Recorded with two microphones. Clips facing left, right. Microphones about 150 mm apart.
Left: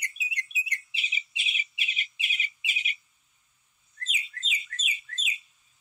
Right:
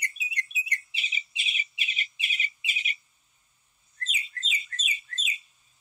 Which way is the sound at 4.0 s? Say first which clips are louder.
Right 1 dB; 35° right (ahead or behind).